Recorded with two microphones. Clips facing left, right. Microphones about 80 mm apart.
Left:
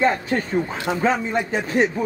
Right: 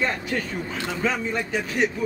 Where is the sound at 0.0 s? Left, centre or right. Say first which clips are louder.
Left 6 dB; left.